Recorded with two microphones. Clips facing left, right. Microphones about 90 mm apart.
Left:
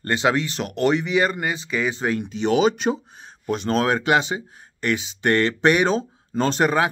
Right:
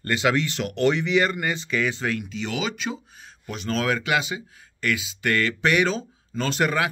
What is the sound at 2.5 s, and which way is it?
Speech, 40° left (ahead or behind).